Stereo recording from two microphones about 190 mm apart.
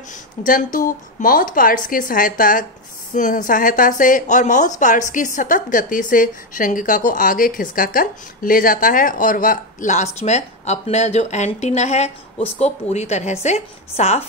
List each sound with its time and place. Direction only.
0.5 s a woman's voice: 45° left (ahead or behind)